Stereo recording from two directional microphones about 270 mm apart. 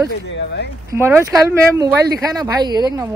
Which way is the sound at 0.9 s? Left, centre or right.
Centre.